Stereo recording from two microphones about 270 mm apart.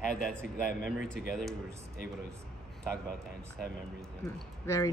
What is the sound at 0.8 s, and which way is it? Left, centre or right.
Speech, left.